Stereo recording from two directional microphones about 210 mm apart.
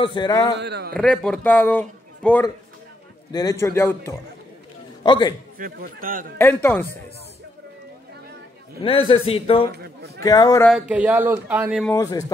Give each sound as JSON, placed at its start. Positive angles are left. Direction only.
{"t": 0.0, "sound": "speech", "side_deg": 20}
{"t": 0.6, "sound": "a man's voice", "side_deg": -55}
{"t": 0.9, "sound": "a man's voice", "side_deg": 5}
{"t": 3.3, "sound": "a man's voice", "side_deg": 20}
{"t": 5.6, "sound": "a man's voice", "side_deg": -40}
{"t": 6.3, "sound": "a man's voice", "side_deg": 10}
{"t": 8.8, "sound": "speech", "side_deg": 25}
{"t": 10.6, "sound": "speech", "side_deg": -5}
{"t": 11.8, "sound": "a man's voice", "side_deg": 15}